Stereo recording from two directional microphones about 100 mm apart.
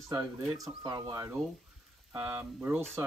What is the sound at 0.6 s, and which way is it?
Speech, 40° right (ahead or behind).